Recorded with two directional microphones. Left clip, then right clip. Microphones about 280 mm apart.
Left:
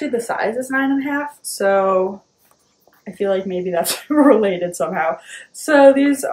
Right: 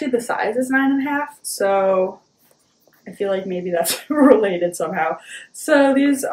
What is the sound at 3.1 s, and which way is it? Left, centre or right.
Speech, centre.